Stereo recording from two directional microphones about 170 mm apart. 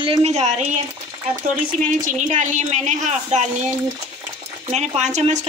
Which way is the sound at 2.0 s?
45° right (ahead or behind).